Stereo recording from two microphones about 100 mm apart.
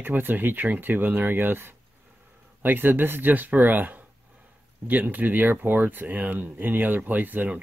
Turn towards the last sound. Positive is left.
turn(degrees=-20)  # may be behind; listen again after turning